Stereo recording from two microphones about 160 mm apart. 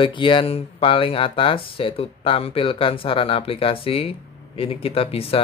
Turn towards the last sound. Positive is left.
turn(degrees=35)  # may be behind; listen again after turning